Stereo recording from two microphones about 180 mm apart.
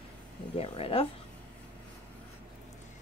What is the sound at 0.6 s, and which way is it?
Speech, 30° left (ahead or behind).